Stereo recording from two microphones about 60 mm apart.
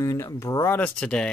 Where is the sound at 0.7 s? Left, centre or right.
Left.